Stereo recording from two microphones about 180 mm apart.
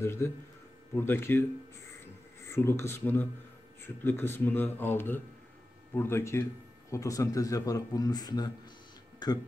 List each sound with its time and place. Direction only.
0.0 s speech: 15° left (ahead or behind)
2.5 s speech: 15° left (ahead or behind)